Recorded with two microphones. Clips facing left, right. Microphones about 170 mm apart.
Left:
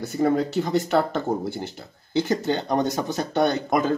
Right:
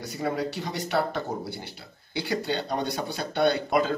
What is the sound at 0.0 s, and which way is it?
Speech, 50° left (ahead or behind).